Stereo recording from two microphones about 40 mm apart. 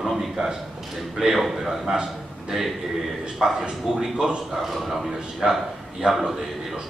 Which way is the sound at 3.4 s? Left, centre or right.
Centre.